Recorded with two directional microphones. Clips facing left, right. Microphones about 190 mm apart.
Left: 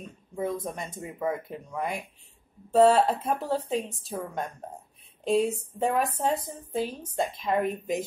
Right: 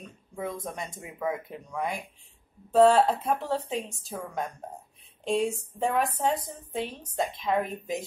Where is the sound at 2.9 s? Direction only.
5° left (ahead or behind).